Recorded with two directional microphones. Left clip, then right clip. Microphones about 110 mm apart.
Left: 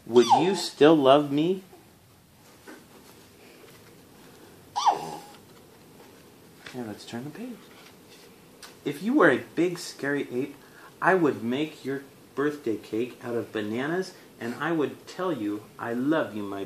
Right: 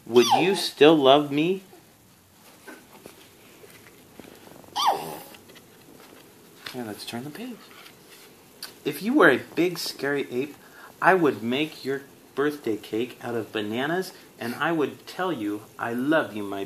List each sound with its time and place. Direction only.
0.1 s speech: 15° left (ahead or behind)
0.5 s speech: 30° left (ahead or behind)
4.7 s dog: 10° left (ahead or behind)
6.8 s speech: 15° left (ahead or behind)
8.5 s speech: 20° left (ahead or behind)